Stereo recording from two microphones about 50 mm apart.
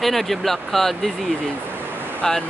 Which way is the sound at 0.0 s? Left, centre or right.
Centre.